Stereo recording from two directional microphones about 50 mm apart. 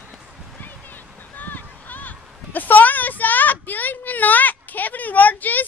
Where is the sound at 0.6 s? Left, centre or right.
Left.